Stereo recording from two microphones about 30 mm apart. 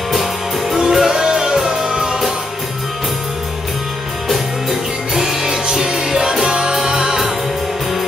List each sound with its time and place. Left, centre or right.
0.1 s music: centre
0.7 s music: centre
4.3 s music: centre; by 7.2 s right